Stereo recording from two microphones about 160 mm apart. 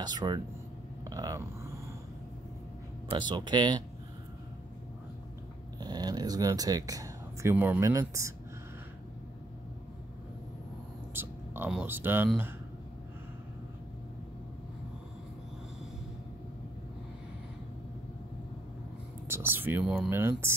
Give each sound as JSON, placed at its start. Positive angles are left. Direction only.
{"t": 0.0, "sound": "speech", "side_deg": -25}
{"t": 1.0, "sound": "a sound", "side_deg": -25}
{"t": 3.1, "sound": "speech", "side_deg": -30}
{"t": 5.8, "sound": "a sound", "side_deg": -25}
{"t": 7.5, "sound": "speech", "side_deg": -10}
{"t": 11.1, "sound": "speech", "side_deg": -15}
{"t": 19.2, "sound": "speech", "side_deg": -15}